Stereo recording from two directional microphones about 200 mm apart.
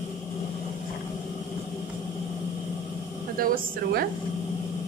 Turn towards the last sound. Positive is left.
turn(degrees=-45)  # may be behind; listen again after turning